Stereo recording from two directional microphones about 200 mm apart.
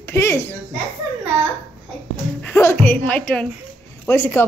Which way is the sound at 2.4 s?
10° left (ahead or behind).